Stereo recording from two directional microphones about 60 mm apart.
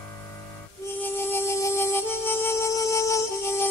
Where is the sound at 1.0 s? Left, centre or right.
Left.